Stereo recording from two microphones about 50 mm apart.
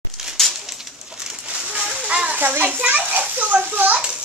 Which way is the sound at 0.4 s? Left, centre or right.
Centre.